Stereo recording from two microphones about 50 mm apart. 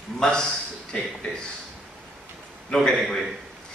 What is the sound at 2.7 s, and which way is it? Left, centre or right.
Speech, centre.